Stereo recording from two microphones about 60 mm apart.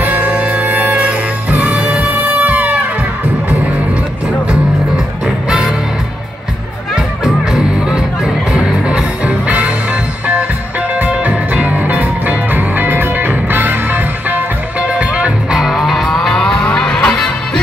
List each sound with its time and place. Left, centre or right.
0.0 s music: right
8.5 s music: centre
11.1 s music: right
14.8 s music: right
15.5 s music: centre